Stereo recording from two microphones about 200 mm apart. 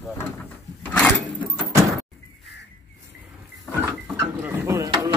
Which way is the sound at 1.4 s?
10° right (ahead or behind).